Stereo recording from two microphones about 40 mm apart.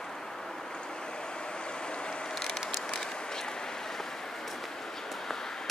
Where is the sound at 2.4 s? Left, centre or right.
Centre.